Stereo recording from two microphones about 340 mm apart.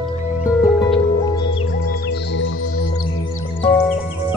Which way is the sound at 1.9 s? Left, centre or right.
Left.